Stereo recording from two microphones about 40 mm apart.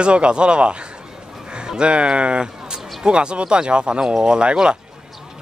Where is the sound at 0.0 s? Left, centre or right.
Right.